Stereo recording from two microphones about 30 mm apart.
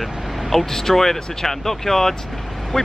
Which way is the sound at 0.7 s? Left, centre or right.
Centre.